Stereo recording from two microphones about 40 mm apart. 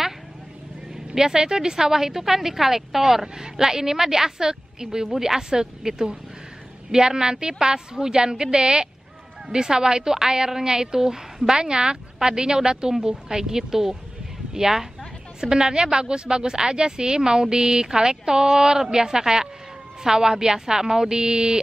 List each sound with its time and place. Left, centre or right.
1.1 s a woman's voice: centre